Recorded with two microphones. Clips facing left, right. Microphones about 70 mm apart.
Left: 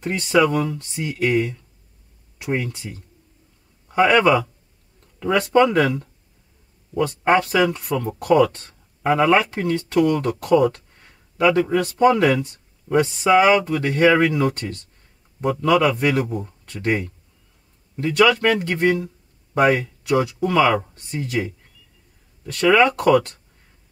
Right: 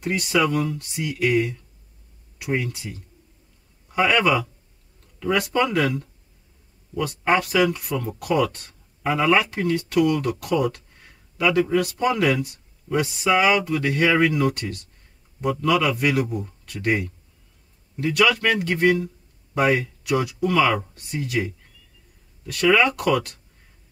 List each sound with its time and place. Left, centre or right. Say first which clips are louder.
0.0 s speech: left 4 dB; left
5.5 s a man's voice: left 9 dB; left
22.5 s speech: left 3 dB; left